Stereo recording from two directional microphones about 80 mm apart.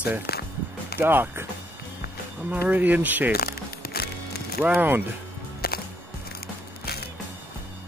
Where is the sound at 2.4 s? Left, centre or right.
Right.